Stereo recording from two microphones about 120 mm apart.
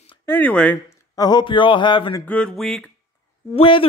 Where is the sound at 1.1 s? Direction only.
35° left (ahead or behind).